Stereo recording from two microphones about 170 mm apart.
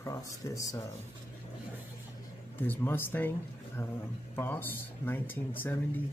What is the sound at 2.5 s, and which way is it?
Speech, 10° left (ahead or behind).